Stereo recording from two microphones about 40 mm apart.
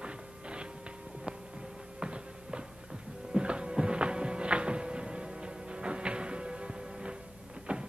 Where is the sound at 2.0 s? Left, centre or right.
Right.